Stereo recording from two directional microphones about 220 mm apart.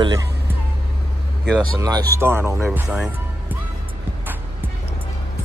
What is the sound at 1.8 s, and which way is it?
Speech, 20° right (ahead or behind).